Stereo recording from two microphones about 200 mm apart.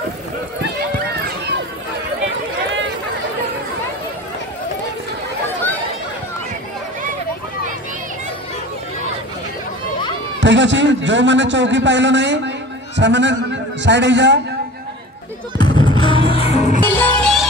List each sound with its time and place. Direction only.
10.4 s a man's voice: 65° right (ahead or behind)
15.5 s music: 20° left (ahead or behind)
16.8 s music: 10° left (ahead or behind)